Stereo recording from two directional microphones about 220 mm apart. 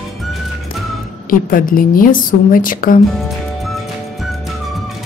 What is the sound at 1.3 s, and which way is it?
A woman's voice, 40° left (ahead or behind).